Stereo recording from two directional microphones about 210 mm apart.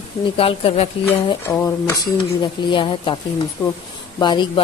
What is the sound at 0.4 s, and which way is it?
Speech, 25° left (ahead or behind).